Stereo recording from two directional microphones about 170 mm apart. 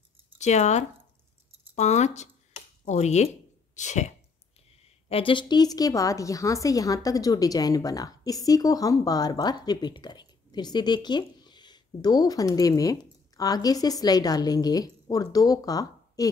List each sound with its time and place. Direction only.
0.4 s speech: 40° left (ahead or behind)
5.1 s a woman's voice: 30° left (ahead or behind)